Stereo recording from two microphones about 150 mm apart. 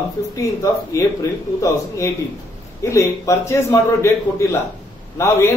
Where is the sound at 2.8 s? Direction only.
20° left (ahead or behind).